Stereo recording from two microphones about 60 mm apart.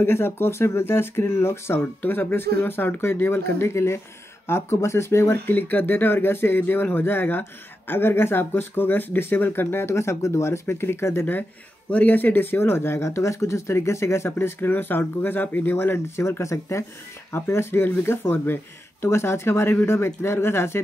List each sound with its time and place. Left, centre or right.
0.0 s speech: left
2.0 s speech: left
5.5 s speech: left
11.9 s speech: left
16.2 s speech: left
19.0 s speech: left